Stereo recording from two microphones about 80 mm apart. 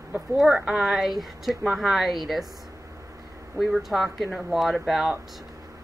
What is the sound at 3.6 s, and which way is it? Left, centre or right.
A woman's voice, centre.